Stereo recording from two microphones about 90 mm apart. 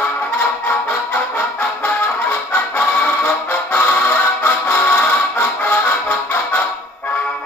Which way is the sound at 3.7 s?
20° left (ahead or behind).